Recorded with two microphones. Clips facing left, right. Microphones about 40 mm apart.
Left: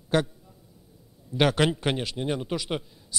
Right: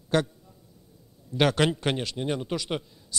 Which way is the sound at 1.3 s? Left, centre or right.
Centre.